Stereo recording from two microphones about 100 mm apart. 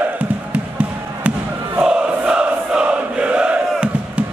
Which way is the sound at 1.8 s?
10° right (ahead or behind).